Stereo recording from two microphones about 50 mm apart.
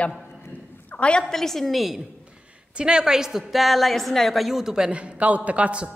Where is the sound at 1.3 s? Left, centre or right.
Centre.